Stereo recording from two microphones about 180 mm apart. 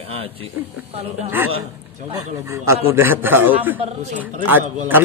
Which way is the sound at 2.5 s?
15° right (ahead or behind).